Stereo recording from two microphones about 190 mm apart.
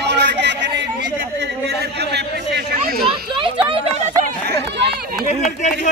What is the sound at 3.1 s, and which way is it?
Speech, 25° right (ahead or behind).